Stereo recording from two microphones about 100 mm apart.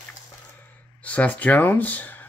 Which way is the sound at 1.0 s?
15° left (ahead or behind).